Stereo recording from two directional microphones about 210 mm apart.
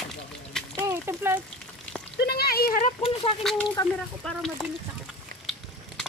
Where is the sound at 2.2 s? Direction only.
50° left (ahead or behind).